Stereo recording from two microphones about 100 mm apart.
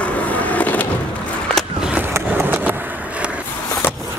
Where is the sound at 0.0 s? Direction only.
15° left (ahead or behind).